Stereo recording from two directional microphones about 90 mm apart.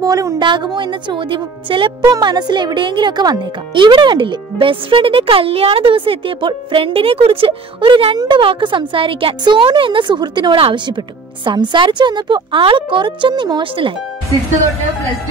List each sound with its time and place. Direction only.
0.0 s a woman's voice: 40° right (ahead or behind)
0.7 s a child's voice: 70° right (ahead or behind)
2.1 s a child's voice: 50° right (ahead or behind)
10.5 s a child's voice: 75° right (ahead or behind)
11.4 s speech: 60° right (ahead or behind)